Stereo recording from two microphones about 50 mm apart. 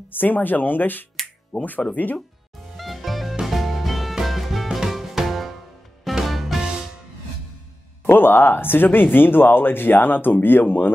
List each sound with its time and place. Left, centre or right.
0.1 s speech: left
2.8 s music: centre
8.1 s speech: left